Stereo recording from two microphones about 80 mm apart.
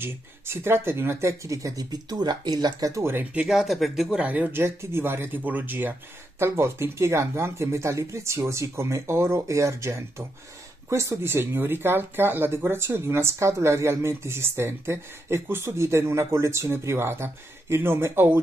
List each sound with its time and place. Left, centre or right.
0.0 s speech: right
2.9 s speech: right
3.4 s speech: centre
4.2 s speech: right